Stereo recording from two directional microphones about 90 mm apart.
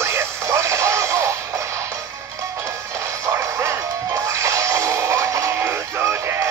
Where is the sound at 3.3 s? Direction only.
30° right (ahead or behind).